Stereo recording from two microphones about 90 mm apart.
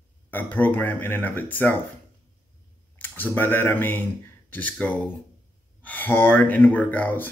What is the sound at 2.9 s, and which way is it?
Speech, 20° left (ahead or behind).